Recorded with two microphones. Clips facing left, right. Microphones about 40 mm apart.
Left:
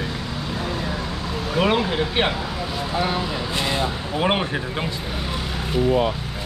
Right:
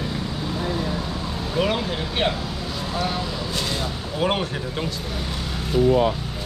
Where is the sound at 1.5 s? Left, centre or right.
Left.